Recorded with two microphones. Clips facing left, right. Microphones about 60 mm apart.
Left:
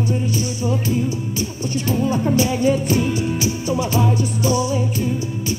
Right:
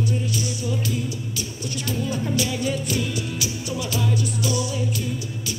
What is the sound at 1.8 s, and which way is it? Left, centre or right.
Music, left.